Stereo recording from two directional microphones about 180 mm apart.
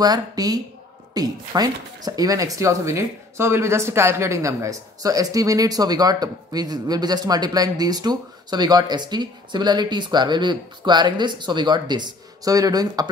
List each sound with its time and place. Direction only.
0.0 s speech: 20° right (ahead or behind)